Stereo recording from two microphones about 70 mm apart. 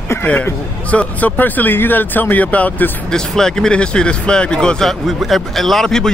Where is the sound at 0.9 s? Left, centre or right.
Left.